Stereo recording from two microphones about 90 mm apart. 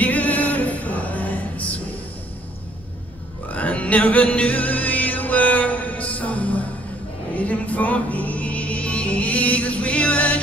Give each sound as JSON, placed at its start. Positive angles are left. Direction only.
{"t": 0.0, "sound": "music", "side_deg": 15}
{"t": 3.4, "sound": "music", "side_deg": 15}